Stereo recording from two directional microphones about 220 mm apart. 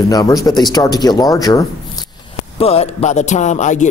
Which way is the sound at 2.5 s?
25° left (ahead or behind).